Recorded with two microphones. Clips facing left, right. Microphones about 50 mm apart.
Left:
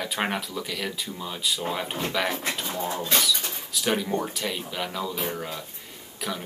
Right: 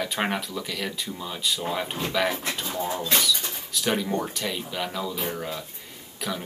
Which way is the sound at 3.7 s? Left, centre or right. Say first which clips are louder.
Even; centre.